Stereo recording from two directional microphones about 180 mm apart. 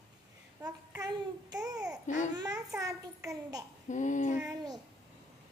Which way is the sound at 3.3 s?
20° right (ahead or behind).